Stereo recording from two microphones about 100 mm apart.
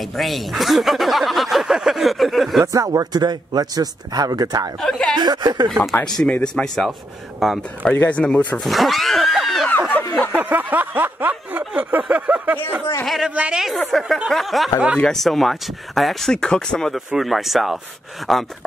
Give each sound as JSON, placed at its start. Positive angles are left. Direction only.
{"t": 0.2, "sound": "speech", "side_deg": 0}
{"t": 2.6, "sound": "a man's voice", "side_deg": -35}
{"t": 4.8, "sound": "a sound", "side_deg": 5}
{"t": 5.1, "sound": "speech", "side_deg": -45}
{"t": 5.7, "sound": "speech", "side_deg": 5}
{"t": 7.8, "sound": "speech", "side_deg": 15}
{"t": 9.7, "sound": "a sound", "side_deg": 15}
{"t": 10.3, "sound": "a sound", "side_deg": -15}
{"t": 13.0, "sound": "speech", "side_deg": 0}
{"t": 13.3, "sound": "speech", "side_deg": -10}